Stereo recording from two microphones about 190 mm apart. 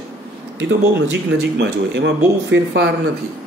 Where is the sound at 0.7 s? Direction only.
70° right (ahead or behind).